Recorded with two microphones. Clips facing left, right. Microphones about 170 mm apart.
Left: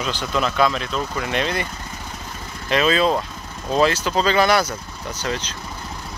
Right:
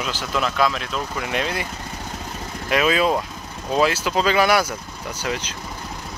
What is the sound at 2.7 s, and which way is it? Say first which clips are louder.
Speech: left 1 dB; 10° right (ahead or behind).